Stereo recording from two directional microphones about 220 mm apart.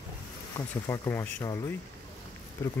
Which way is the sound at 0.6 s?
15° left (ahead or behind).